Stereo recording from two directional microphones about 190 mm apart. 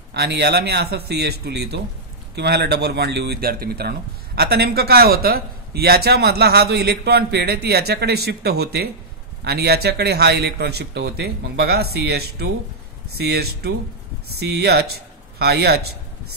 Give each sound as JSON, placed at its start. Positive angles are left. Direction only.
{"t": 0.1, "sound": "a man's voice", "side_deg": -60}